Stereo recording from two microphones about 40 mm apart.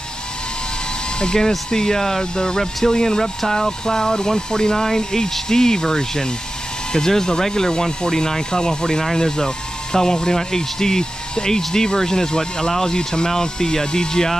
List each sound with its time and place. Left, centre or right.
1.2 s speech: centre